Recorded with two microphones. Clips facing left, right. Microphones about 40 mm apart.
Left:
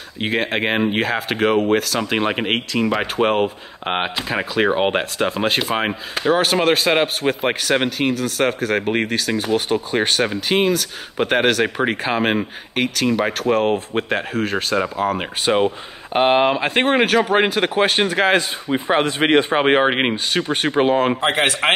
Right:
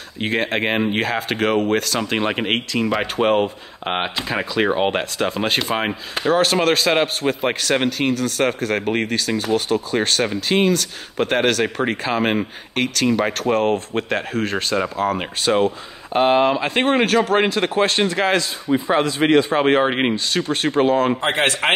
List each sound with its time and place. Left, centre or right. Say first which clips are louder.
0.2 s speech: even; centre
15.4 s speech: even; centre
18.7 s speech: even; left
19.6 s speech: left 1 dB; left